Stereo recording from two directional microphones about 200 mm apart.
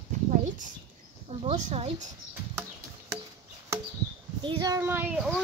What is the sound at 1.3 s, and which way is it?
Speech, 35° right (ahead or behind).